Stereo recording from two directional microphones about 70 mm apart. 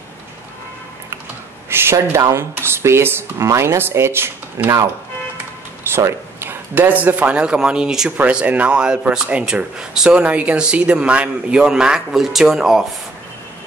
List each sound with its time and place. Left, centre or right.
1.7 s speech: right
5.9 s speech: right; by 12.8 s centre